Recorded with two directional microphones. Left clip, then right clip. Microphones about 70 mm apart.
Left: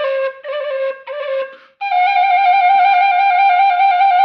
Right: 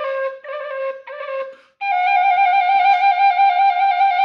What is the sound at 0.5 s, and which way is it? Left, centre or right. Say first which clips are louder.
Music: left 5 dB; left.